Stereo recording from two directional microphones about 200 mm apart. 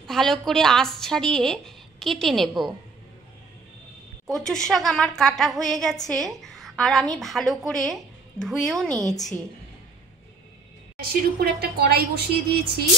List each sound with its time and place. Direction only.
0.0 s a woman's voice: centre (ahead or behind)
4.3 s a woman's voice: 5° left (ahead or behind)
11.0 s a woman's voice: 50° right (ahead or behind)